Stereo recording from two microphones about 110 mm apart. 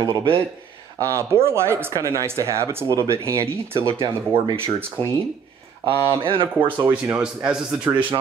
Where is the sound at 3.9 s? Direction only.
55° right (ahead or behind).